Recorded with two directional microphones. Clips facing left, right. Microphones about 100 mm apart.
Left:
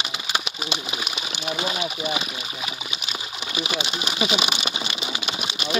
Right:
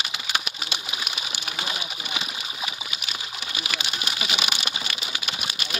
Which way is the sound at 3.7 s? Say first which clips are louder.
Left 3 dB; 20° left (ahead or behind).